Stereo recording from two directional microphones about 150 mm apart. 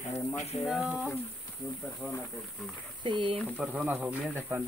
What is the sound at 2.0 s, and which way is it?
Speech, 15° left (ahead or behind).